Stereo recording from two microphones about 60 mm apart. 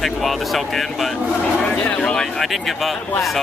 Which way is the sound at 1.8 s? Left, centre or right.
Centre.